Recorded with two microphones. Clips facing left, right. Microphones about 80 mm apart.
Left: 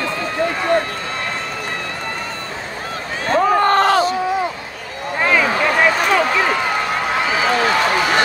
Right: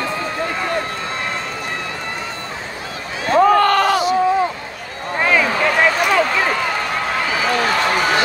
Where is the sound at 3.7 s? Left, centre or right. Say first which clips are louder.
Left 1 dB; left.